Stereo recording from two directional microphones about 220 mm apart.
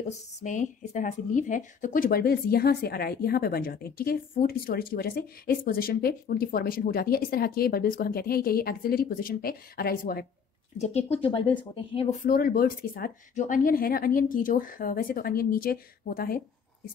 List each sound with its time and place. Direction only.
0.4 s speech: 35° left (ahead or behind)
10.8 s speech: 30° left (ahead or behind)